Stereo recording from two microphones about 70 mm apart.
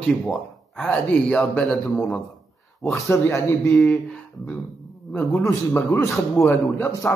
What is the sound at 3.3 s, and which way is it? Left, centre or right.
Speech, left.